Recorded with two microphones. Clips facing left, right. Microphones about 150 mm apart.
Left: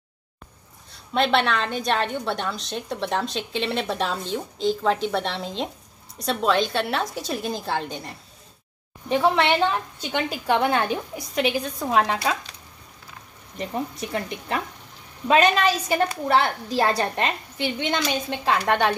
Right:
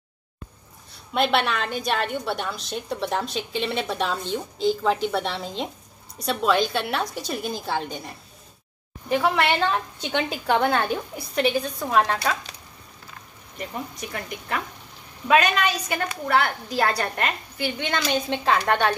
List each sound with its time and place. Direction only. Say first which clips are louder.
1.1 s a woman's voice: left 1 dB; 5° right (ahead or behind)
9.1 s a woman's voice: left 2 dB; 25° left (ahead or behind)
10.3 s a woman's voice: left 1 dB; centre (ahead or behind)
10.6 s a woman's voice: even; 15° left (ahead or behind)
13.6 s a woman's voice: left 4 dB; 25° left (ahead or behind)
18.3 s a woman's voice: even; 5° left (ahead or behind)